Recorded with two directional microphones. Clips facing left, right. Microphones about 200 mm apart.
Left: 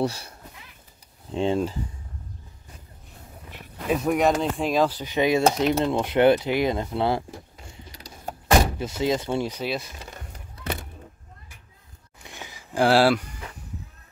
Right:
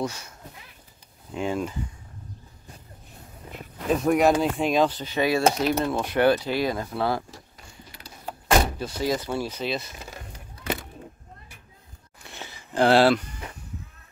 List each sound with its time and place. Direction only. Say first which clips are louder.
0.0 s speech: left 4 dB; 35° left (ahead or behind)
1.3 s speech: left 4 dB; 30° left (ahead or behind)
3.9 s speech: right 1 dB; centre (ahead or behind); by 7.2 s 20° left (ahead or behind)
7.9 s a sound: left 1 dB; 40° left (ahead or behind)
8.7 s speech: left 2 dB; 20° left (ahead or behind)
12.2 s a sound: even; 15° left (ahead or behind)